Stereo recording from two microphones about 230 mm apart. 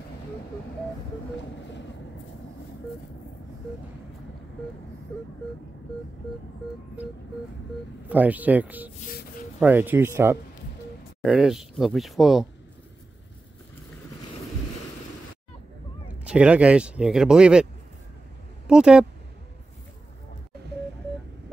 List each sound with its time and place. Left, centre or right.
1.4 s vehicle: left
7.0 s speech: centre
16.3 s speech: centre
18.7 s speech: centre